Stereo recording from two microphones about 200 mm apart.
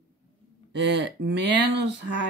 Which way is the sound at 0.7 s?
60° right (ahead or behind).